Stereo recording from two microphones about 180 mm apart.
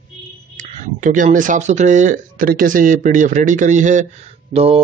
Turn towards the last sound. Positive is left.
turn(degrees=-35)  # may be behind; listen again after turning